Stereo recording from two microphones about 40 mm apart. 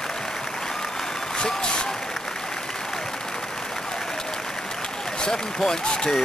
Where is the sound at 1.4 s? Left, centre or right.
Left.